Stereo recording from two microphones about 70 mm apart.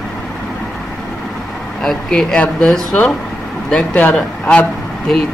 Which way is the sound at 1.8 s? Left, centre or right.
Centre.